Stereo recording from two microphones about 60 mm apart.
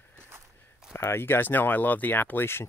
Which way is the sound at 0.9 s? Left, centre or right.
Left.